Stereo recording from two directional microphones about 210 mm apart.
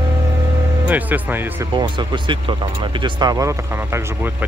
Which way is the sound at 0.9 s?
10° right (ahead or behind).